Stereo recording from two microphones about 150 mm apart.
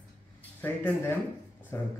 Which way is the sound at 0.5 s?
10° left (ahead or behind).